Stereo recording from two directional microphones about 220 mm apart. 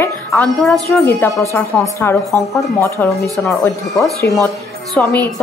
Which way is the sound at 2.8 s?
15° left (ahead or behind).